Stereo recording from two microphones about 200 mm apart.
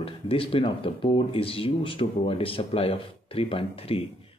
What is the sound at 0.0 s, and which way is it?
Speech, 25° left (ahead or behind).